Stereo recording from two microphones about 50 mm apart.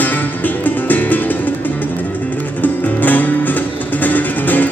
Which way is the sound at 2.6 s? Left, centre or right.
Left.